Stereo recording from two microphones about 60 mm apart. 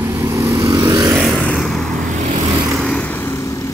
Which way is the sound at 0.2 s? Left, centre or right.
Right.